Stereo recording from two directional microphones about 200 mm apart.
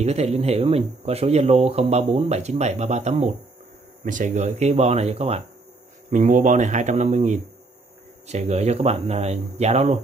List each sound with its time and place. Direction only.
0.0 s speech: 35° right (ahead or behind)